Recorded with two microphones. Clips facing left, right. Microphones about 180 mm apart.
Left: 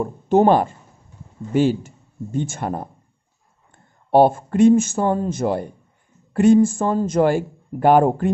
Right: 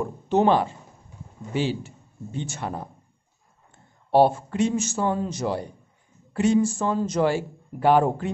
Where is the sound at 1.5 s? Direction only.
50° left (ahead or behind).